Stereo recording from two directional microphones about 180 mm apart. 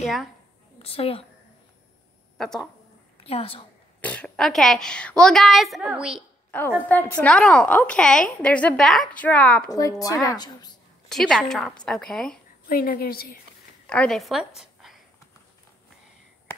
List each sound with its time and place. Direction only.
0.0 s a woman's voice: centre (ahead or behind)
0.7 s a woman's voice: 30° left (ahead or behind)
2.3 s a woman's voice: centre (ahead or behind)
3.3 s a woman's voice: 30° left (ahead or behind)
4.0 s a woman's voice: 5° left (ahead or behind)
6.5 s a woman's voice: 5° left (ahead or behind)
9.7 s speech: 20° left (ahead or behind)
11.1 s a woman's voice: centre (ahead or behind)
12.6 s a woman's voice: 55° left (ahead or behind)
13.8 s a woman's voice: 5° left (ahead or behind)